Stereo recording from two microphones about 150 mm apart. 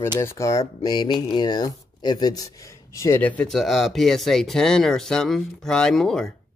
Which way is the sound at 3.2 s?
10° left (ahead or behind).